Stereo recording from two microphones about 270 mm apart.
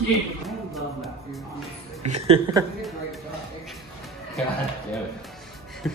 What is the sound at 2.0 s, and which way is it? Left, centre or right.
Speech, right.